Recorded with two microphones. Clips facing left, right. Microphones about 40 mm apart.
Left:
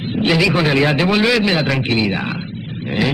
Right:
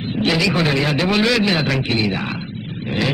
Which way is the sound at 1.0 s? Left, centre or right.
Centre.